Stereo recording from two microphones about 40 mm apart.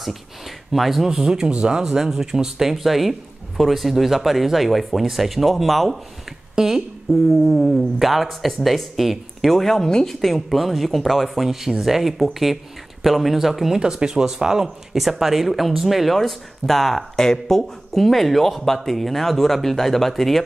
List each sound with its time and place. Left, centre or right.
0.7 s speech: centre
10.0 s speech: centre
13.7 s speech: centre